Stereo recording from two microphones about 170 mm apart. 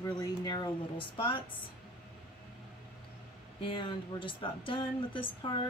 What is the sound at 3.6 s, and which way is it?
Speech, 30° left (ahead or behind).